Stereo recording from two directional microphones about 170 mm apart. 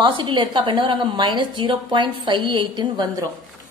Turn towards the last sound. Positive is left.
turn(degrees=-25)  # may be behind; listen again after turning